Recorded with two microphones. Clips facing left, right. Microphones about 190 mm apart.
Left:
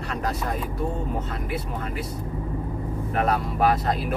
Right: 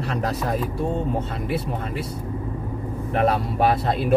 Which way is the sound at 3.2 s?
30° right (ahead or behind).